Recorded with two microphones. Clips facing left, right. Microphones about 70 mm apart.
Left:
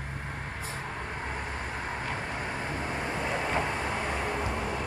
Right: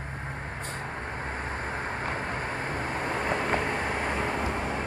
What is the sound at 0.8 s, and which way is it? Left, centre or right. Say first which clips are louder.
Vehicle: right 1 dB; right.